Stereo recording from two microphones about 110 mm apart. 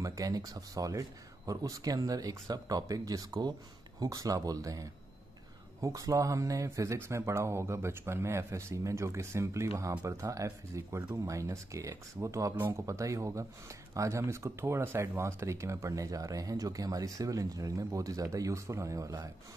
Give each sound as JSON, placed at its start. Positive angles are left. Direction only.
{"t": 0.0, "sound": "speech", "side_deg": -30}